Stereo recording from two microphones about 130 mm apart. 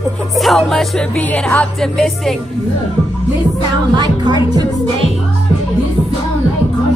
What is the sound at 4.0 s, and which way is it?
Speech, 35° right (ahead or behind).